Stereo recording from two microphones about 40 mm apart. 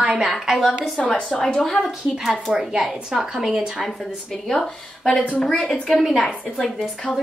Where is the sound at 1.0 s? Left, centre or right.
Centre.